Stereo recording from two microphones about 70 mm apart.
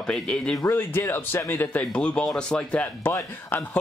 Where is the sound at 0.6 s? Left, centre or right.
Left.